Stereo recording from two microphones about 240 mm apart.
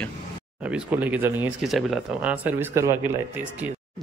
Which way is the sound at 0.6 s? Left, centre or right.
Centre.